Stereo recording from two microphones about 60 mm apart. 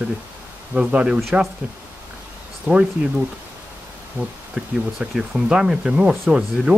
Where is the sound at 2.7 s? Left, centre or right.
Right.